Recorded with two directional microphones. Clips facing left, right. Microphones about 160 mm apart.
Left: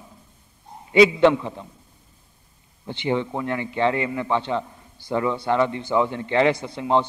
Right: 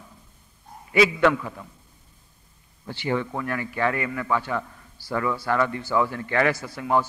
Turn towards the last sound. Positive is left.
turn(degrees=25)  # may be behind; listen again after turning